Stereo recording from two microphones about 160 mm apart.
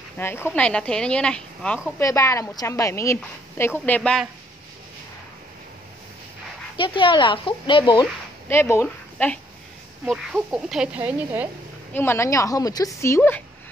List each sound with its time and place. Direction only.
0.2 s a woman's voice: 15° left (ahead or behind)
2.0 s a woman's voice: 20° left (ahead or behind)
6.8 s speech: 30° left (ahead or behind)
8.5 s a woman's voice: 15° left (ahead or behind)
10.0 s speech: 5° right (ahead or behind)
11.9 s a woman's voice: 15° left (ahead or behind)